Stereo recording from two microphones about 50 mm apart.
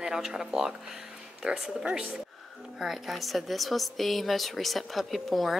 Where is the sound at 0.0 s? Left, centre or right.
Centre.